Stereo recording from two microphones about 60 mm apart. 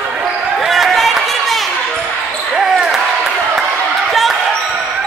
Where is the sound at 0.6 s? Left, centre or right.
Centre.